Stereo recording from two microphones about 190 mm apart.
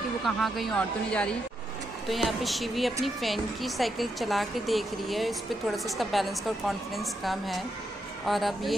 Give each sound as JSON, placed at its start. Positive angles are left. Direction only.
{"t": 0.2, "sound": "a woman's voice", "side_deg": 0}